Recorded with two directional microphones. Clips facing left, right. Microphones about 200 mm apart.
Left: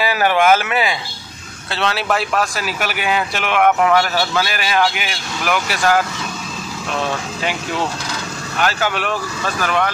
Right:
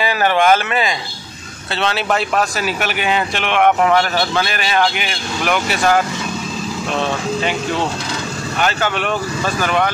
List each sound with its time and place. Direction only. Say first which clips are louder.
0.0 s speech: even; 10° left (ahead or behind)
8.5 s speech: even; 5° left (ahead or behind)